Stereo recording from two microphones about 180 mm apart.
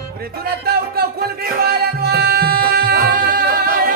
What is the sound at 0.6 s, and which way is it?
Music, 60° right (ahead or behind).